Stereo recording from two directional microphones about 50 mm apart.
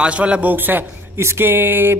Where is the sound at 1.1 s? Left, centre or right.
Right.